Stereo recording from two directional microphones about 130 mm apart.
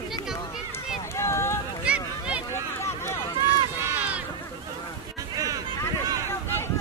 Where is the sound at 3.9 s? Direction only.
10° right (ahead or behind).